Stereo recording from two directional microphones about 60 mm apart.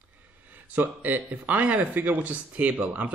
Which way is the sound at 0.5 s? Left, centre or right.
Right.